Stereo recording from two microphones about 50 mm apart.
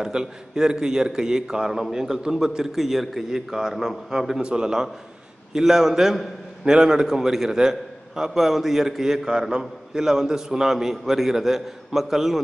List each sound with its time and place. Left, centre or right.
0.0 s a man's voice: centre